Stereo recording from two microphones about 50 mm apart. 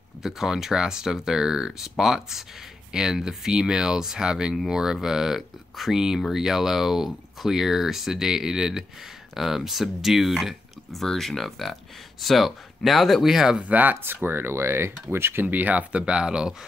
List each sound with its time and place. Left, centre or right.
0.2 s speech: centre
13.6 s speech: right
15.4 s speech: right
16.0 s speech: centre